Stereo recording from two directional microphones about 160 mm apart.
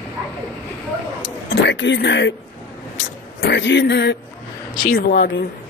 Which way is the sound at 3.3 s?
90° left.